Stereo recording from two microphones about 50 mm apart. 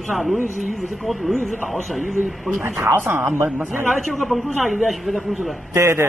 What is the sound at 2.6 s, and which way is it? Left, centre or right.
Speech, right.